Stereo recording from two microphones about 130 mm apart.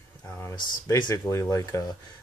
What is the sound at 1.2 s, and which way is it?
Speech, 20° left (ahead or behind).